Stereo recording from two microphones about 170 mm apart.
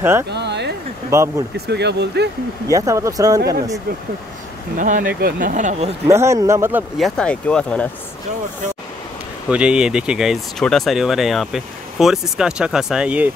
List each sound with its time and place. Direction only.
0.3 s a sound: 85° right
1.1 s speech: 20° right (ahead or behind)
1.7 s speech: 80° right
2.7 s speech: 20° right (ahead or behind)
4.7 s speech: 50° right (ahead or behind)
6.0 s speech: 15° right (ahead or behind)
7.0 s speech: 5° left (ahead or behind)
9.5 s speech: 5° right (ahead or behind)